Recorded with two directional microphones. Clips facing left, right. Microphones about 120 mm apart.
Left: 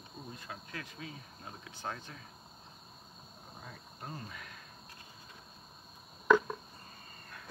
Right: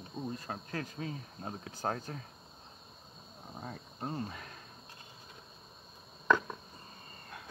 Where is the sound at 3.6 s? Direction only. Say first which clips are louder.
Right 7 dB; 35° right (ahead or behind).